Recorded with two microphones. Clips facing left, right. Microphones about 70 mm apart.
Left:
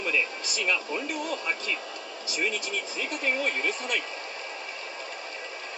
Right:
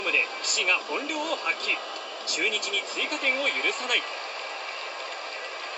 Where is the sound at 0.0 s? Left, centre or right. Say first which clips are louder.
Even; right.